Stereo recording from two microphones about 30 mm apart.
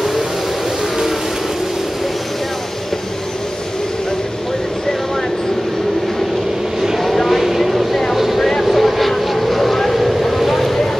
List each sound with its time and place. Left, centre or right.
7.0 s vehicle: centre